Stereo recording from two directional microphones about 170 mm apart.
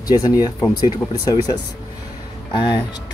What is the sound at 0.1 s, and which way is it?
Speech, 20° left (ahead or behind).